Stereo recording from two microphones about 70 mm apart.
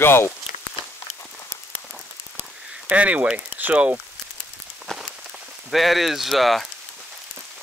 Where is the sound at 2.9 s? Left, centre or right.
Right.